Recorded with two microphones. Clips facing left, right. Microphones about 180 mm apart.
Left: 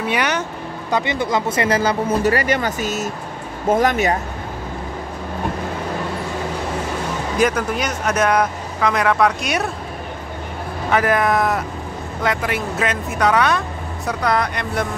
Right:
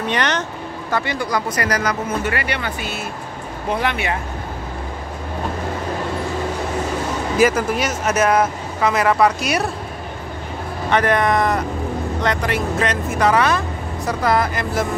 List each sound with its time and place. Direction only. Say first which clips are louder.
0.0 s speech: even; 10° left (ahead or behind)
0.9 s speech: left 2 dB; 20° left (ahead or behind); by 4.2 s 40° left (ahead or behind)
7.3 s speech: right 2 dB; 5° right (ahead or behind)
10.9 s speech: even; centre (ahead or behind)